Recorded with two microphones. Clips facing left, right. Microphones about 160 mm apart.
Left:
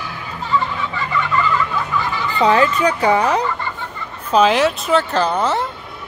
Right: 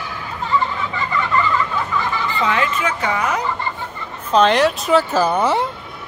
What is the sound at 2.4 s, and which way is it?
Speech, 35° left (ahead or behind).